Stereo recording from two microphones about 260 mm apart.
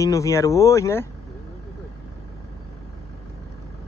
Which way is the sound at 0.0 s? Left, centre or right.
Centre.